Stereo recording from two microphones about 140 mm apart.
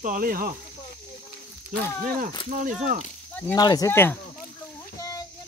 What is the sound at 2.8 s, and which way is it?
Speech, 70° right (ahead or behind).